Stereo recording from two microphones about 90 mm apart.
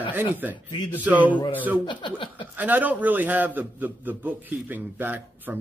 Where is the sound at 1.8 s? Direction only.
65° left (ahead or behind).